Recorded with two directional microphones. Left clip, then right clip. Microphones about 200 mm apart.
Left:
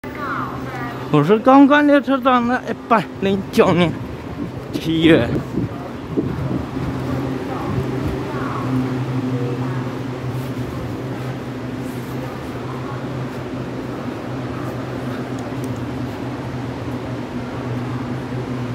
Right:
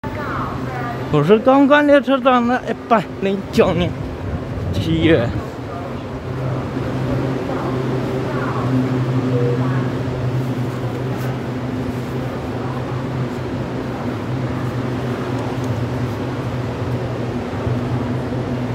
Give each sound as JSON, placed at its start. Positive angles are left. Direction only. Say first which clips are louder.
{"t": 1.1, "sound": "speech", "louder": "left 1 dB", "side_deg": 10}